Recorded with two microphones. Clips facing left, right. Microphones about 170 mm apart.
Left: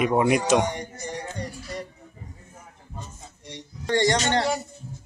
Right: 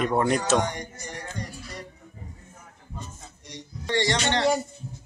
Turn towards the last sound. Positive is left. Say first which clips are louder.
# left 3 dB
turn(degrees=45)  # may be behind; listen again after turning